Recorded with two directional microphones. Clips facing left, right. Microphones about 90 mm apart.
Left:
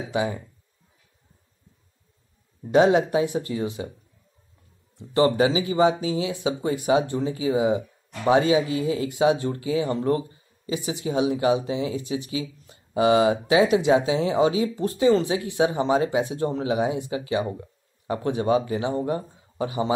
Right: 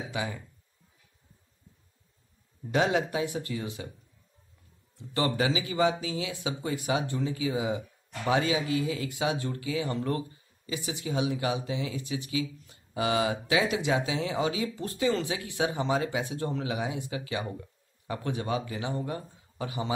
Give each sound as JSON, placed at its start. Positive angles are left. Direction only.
{"t": 0.1, "sound": "speech", "side_deg": 25}
{"t": 2.7, "sound": "speech", "side_deg": 25}
{"t": 5.1, "sound": "speech", "side_deg": 30}